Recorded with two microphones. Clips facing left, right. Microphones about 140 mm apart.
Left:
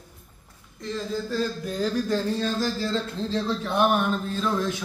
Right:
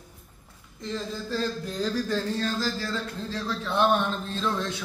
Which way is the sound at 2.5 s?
20° left (ahead or behind).